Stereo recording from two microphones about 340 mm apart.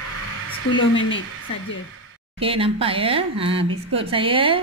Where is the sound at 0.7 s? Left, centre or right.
Left.